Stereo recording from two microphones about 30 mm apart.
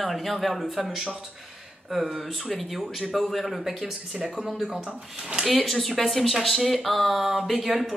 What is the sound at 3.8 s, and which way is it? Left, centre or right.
Speech, right.